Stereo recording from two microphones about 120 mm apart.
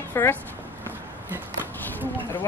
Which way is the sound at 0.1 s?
20° left (ahead or behind).